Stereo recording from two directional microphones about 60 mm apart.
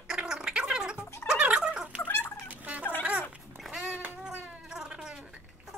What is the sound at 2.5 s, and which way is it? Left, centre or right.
Fowl, right.